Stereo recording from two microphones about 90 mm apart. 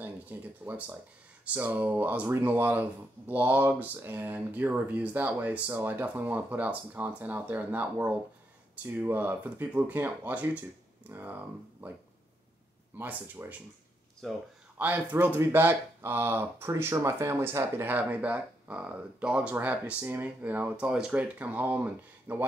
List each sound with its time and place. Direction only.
0.0 s speech: 20° right (ahead or behind)
12.9 s speech: 20° right (ahead or behind)
14.2 s speech: centre (ahead or behind)
14.8 s speech: 20° right (ahead or behind)